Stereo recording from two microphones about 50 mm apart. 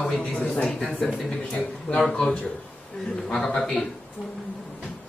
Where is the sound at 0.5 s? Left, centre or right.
Left.